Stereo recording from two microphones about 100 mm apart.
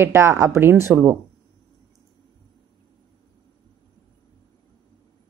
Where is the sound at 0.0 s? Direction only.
25° right (ahead or behind).